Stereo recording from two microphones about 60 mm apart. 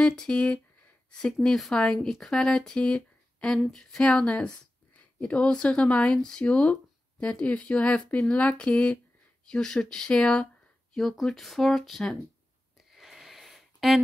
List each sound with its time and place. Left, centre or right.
0.0 s speech: centre
4.0 s speech: centre
12.9 s a sound: centre